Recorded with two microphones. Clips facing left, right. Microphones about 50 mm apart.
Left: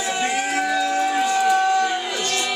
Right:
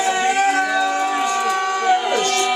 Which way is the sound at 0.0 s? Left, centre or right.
Centre.